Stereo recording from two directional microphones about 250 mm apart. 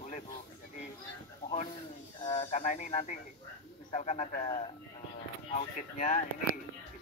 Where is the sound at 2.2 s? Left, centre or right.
Left.